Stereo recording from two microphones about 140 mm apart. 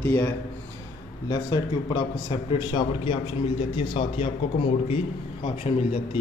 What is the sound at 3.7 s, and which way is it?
Speech, 45° left (ahead or behind).